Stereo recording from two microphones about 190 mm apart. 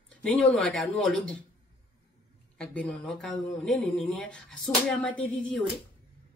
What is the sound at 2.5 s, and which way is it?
Speech, 5° left (ahead or behind).